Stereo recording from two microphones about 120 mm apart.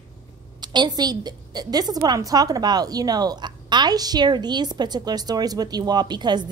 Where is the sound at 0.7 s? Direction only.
35° right (ahead or behind).